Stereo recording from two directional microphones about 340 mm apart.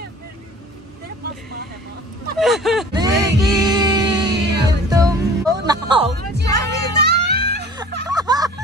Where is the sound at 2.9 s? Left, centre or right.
Centre.